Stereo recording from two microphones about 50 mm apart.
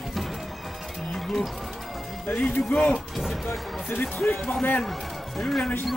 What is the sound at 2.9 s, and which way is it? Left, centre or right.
Speech, centre.